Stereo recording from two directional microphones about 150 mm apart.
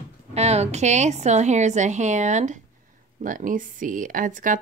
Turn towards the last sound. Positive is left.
turn(degrees=-60)  # may be behind; listen again after turning